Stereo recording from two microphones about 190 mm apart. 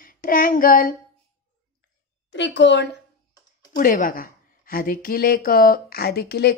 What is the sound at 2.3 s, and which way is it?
Speech, 70° left (ahead or behind).